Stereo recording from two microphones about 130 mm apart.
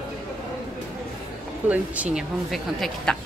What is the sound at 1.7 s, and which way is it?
Speech, 10° right (ahead or behind).